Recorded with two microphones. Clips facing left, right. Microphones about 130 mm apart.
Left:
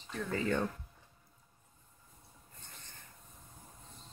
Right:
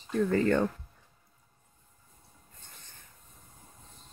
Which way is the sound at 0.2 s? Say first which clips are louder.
Right 10 dB; 50° right (ahead or behind).